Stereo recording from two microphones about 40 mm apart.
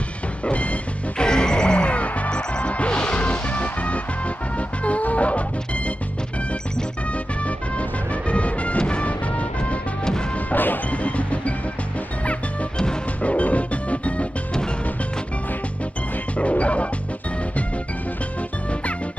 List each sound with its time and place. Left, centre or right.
0.5 s music: left
1.2 s music: centre; by 5.4 s left
7.4 s music: left
10.5 s smash: left
10.9 s music: left
13.2 s music: left
16.3 s music: left